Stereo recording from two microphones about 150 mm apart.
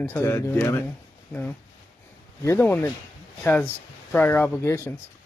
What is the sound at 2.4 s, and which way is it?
Speech, 15° left (ahead or behind).